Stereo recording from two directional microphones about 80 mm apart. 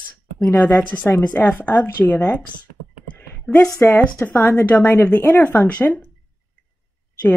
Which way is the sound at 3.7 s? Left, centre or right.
Left.